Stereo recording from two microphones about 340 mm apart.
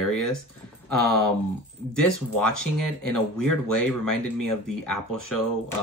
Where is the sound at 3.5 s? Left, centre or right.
Left.